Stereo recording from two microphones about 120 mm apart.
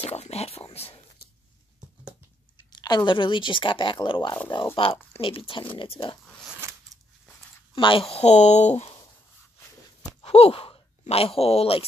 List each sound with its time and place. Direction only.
0.1 s speech: 60° left (ahead or behind)
2.8 s speech: 35° left (ahead or behind)
7.7 s speech: 45° left (ahead or behind); by 8.9 s 70° left (ahead or behind)
10.2 s speech: 55° left (ahead or behind)